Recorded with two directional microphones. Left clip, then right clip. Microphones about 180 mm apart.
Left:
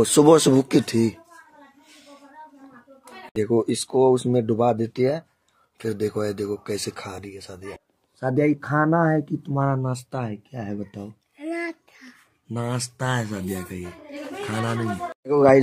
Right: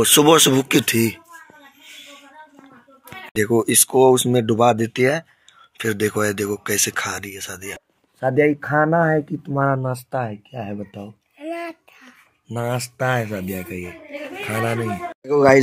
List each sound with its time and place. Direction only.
0.0 s speech: 15° left (ahead or behind)
3.3 s speech: centre (ahead or behind)
8.5 s speech: 40° right (ahead or behind)
11.3 s a sound: 10° right (ahead or behind)
12.4 s speech: 35° right (ahead or behind)
15.2 s speech: centre (ahead or behind)